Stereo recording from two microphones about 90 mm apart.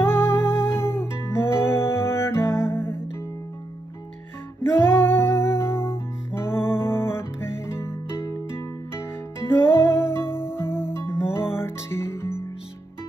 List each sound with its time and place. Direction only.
0.0 s music: 25° left (ahead or behind)
4.7 s music: 25° left (ahead or behind)
9.6 s music: 25° left (ahead or behind)